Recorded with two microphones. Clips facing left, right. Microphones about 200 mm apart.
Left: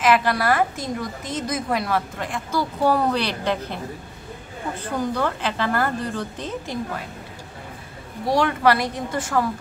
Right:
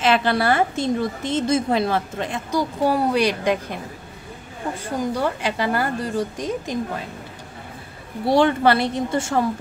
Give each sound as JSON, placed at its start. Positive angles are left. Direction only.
{"t": 0.0, "sound": "a woman's voice", "side_deg": -25}
{"t": 2.9, "sound": "a woman's voice", "side_deg": -10}
{"t": 8.3, "sound": "a woman's voice", "side_deg": -30}